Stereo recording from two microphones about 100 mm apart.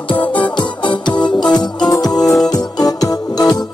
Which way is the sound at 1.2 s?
45° left (ahead or behind).